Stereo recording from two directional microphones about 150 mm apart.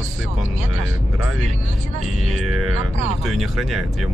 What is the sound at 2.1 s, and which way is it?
Speech, centre (ahead or behind).